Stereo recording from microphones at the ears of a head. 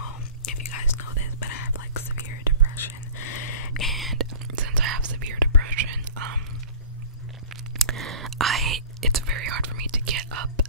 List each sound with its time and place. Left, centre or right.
0.0 s whispering: left
4.1 s whispering: right
7.9 s whispering: right